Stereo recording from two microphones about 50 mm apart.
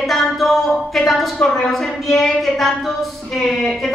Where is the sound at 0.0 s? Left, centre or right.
Centre.